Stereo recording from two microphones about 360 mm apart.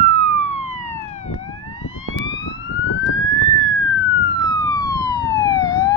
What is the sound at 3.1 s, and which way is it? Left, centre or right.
Police car, left.